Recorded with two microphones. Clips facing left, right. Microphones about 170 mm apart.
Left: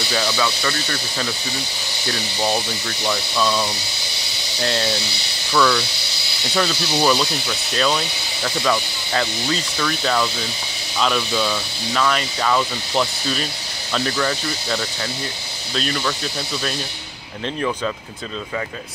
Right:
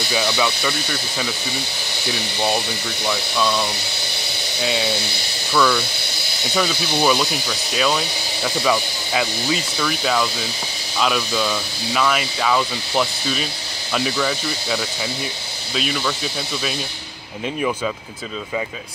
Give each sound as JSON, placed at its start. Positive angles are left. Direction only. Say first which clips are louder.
{"t": 0.1, "sound": "speech", "louder": "right 1 dB", "side_deg": -10}
{"t": 3.1, "sound": "speech", "louder": "even", "side_deg": 0}